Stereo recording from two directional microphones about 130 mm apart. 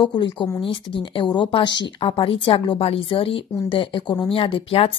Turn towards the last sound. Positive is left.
turn(degrees=45)  # may be behind; listen again after turning